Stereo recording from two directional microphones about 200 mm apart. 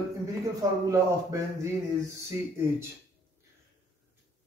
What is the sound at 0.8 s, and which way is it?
Speech, 15° right (ahead or behind).